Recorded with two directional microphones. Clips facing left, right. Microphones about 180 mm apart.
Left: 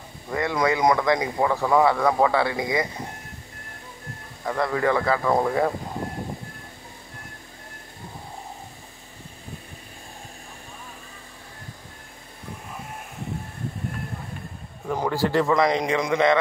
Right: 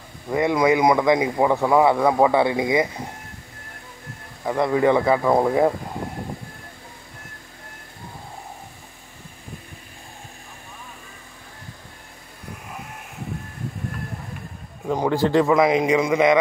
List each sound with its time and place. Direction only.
0.3 s speech: 20° right (ahead or behind)
4.5 s speech: 20° right (ahead or behind)
14.9 s speech: 20° right (ahead or behind)
15.5 s a man's voice: 5° right (ahead or behind)